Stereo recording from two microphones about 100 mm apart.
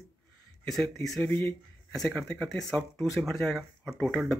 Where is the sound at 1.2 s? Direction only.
20° left (ahead or behind).